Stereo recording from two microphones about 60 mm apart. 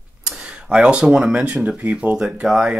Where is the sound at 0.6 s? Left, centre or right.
Centre.